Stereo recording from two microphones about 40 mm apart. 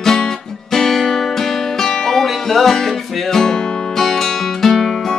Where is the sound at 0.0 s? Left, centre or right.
Centre.